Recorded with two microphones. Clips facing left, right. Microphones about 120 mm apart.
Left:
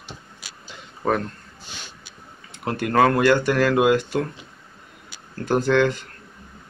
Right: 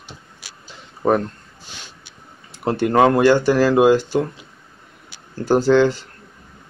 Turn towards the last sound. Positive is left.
turn(degrees=-30)  # may be behind; listen again after turning